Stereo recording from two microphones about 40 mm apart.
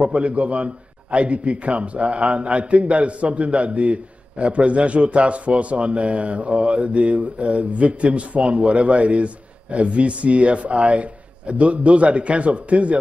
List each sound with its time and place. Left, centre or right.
0.0 s a man's voice: right